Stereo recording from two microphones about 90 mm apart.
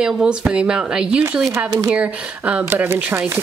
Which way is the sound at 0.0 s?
10° right (ahead or behind).